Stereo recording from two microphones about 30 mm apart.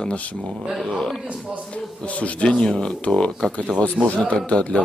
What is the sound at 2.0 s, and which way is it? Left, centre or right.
Speech, left.